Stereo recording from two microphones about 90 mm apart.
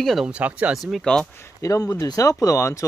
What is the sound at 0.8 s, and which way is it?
Speech, centre (ahead or behind).